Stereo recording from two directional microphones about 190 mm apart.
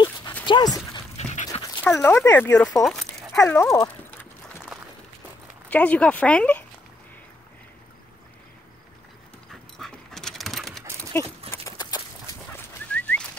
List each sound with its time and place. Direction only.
0.5 s speech: 20° left (ahead or behind)
1.1 s dog: 35° left (ahead or behind)
1.5 s speech: 15° left (ahead or behind)
2.8 s dog: centre (ahead or behind)
3.3 s speech: 15° left (ahead or behind)
4.7 s a sound: centre (ahead or behind)
5.7 s speech: 5° left (ahead or behind)
9.5 s dog: centre (ahead or behind)
11.5 s clip-clop: 20° left (ahead or behind)
12.9 s bird: 10° left (ahead or behind)